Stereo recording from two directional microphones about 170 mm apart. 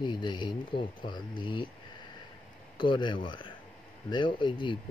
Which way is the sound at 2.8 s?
30° left (ahead or behind).